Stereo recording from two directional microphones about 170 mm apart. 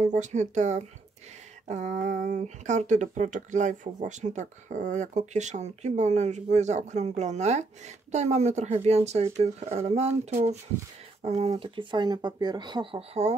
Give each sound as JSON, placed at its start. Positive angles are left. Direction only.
{"t": 0.0, "sound": "speech", "side_deg": -45}
{"t": 11.2, "sound": "speech", "side_deg": -40}